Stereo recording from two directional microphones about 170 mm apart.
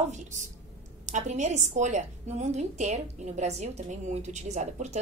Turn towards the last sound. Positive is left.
turn(degrees=-45)  # may be behind; listen again after turning